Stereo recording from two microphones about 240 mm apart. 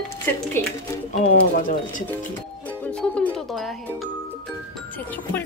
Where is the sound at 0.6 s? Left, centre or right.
Centre.